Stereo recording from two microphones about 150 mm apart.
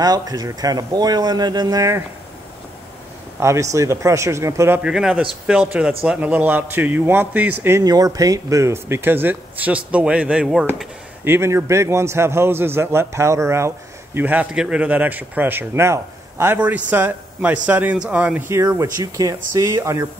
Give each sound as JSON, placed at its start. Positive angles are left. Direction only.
{"t": 0.0, "sound": "speech", "side_deg": -25}
{"t": 3.3, "sound": "a man's voice", "side_deg": -20}
{"t": 11.2, "sound": "a man's voice", "side_deg": -15}
{"t": 18.5, "sound": "speech", "side_deg": -20}